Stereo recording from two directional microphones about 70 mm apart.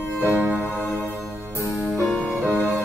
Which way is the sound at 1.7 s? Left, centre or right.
Centre.